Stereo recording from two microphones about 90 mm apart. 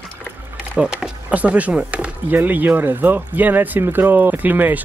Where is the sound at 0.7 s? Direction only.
15° right (ahead or behind).